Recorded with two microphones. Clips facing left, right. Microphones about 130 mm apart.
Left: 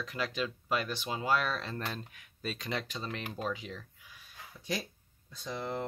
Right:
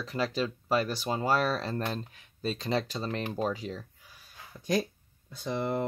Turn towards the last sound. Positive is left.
turn(degrees=-60)  # may be behind; listen again after turning